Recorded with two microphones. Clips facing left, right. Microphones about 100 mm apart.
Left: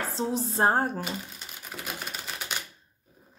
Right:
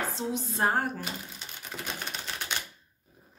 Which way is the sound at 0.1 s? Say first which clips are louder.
Left 4 dB; 35° left (ahead or behind).